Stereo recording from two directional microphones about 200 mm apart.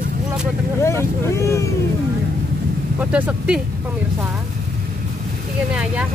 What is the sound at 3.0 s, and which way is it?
Speech, 5° right (ahead or behind).